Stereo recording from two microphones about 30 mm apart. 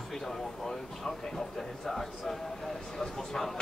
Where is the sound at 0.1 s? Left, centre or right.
Centre.